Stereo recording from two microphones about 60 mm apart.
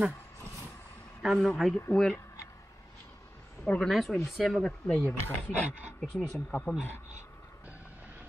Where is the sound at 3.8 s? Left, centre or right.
Centre.